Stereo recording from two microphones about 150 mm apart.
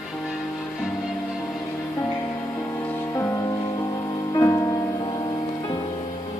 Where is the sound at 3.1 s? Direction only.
20° left (ahead or behind).